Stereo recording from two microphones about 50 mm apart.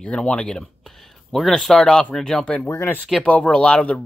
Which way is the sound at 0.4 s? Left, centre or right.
Centre.